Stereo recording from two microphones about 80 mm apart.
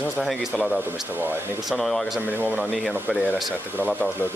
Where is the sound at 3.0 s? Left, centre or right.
Centre.